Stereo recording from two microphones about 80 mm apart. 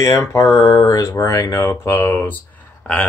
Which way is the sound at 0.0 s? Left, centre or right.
Left.